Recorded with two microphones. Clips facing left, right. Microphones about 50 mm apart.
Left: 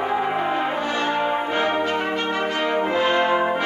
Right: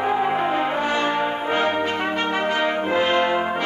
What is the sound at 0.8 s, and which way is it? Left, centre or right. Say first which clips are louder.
Brass instrument: right 2 dB; right.